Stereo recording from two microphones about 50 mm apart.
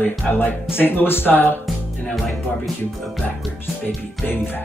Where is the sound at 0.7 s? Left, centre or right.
Left.